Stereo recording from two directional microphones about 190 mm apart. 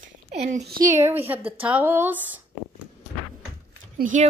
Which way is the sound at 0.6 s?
55° right (ahead or behind).